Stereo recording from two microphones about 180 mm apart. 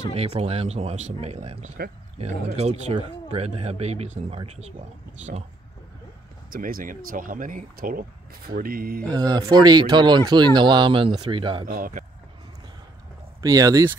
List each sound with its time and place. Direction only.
0.1 s speech: 35° right (ahead or behind)
6.5 s speech: 50° right (ahead or behind)
9.1 s speech: 20° right (ahead or behind)
11.6 s speech: 50° right (ahead or behind)
13.4 s speech: 20° right (ahead or behind)